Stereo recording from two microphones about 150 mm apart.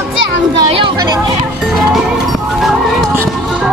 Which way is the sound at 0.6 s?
35° right (ahead or behind).